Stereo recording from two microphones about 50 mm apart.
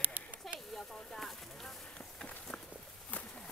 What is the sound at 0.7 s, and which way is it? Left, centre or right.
Speech, centre.